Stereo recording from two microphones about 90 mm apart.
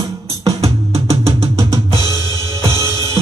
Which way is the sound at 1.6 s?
35° right (ahead or behind).